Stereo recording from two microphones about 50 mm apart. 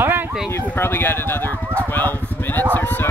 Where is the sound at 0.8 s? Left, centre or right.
Left.